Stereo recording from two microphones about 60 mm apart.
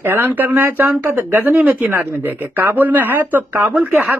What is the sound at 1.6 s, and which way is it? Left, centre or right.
Speech, centre.